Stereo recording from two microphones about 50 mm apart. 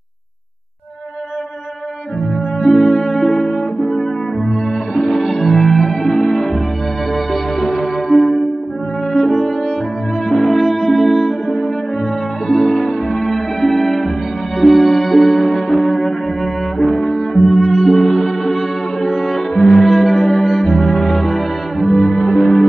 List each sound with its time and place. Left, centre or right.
2.6 s music: centre
7.6 s music: centre
12.4 s music: centre